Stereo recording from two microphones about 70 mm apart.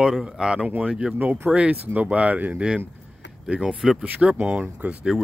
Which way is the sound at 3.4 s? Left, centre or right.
Centre.